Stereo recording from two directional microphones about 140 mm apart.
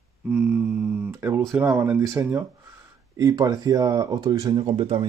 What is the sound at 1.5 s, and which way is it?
Speech, 15° right (ahead or behind).